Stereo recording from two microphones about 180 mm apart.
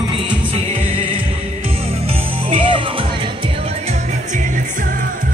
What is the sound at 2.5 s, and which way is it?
Music, 30° right (ahead or behind).